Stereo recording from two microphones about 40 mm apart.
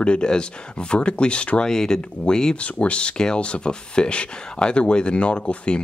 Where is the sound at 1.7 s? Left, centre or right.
Centre.